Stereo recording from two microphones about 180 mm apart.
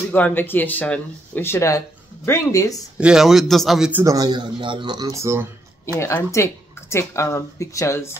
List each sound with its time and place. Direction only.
0.1 s speech: 10° left (ahead or behind)
3.0 s speech: 5° right (ahead or behind)
4.0 s speech: 20° right (ahead or behind)
5.9 s speech: 15° left (ahead or behind)